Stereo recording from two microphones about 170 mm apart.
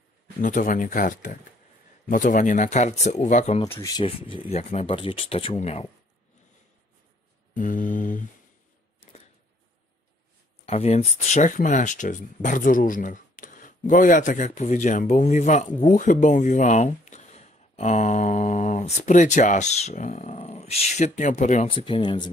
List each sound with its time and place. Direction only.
0.4 s speech: 50° left (ahead or behind)
3.8 s speech: 30° left (ahead or behind)
7.5 s speech: 50° left (ahead or behind)
10.6 s speech: 35° left (ahead or behind)
21.6 s speech: 30° left (ahead or behind)